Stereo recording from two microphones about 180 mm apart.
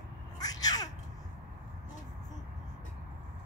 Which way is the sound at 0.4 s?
20° left (ahead or behind).